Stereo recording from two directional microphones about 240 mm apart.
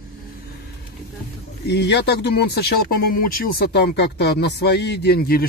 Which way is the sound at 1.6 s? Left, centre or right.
Left.